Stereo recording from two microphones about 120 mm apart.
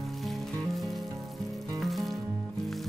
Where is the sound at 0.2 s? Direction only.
Centre (ahead or behind).